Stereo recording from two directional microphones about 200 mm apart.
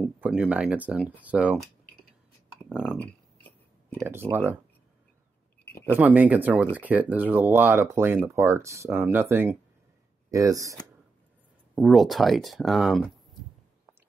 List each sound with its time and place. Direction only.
0.0 s speech: 5° right (ahead or behind)
2.7 s speech: 5° right (ahead or behind)
4.0 s speech: 10° right (ahead or behind)
5.9 s speech: 10° right (ahead or behind)
11.7 s speech: centre (ahead or behind)